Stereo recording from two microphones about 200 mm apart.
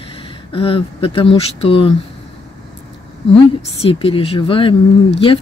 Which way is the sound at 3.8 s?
25° left (ahead or behind).